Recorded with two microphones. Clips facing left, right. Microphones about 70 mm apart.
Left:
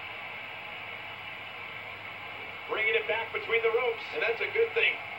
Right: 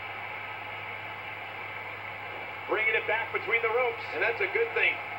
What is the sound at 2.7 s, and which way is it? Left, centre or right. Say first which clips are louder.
A man's voice: right 1 dB; right.